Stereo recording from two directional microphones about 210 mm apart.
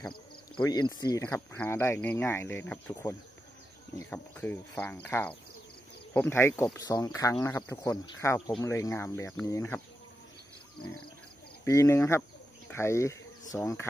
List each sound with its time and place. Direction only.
0.6 s speech: 20° left (ahead or behind)
11.6 s speech: 15° left (ahead or behind)